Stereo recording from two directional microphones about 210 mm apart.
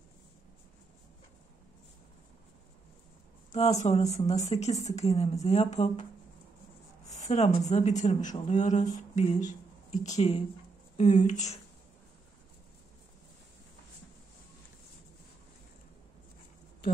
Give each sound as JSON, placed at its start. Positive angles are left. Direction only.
{"t": 3.5, "sound": "speech", "side_deg": 30}
{"t": 7.1, "sound": "speech", "side_deg": 35}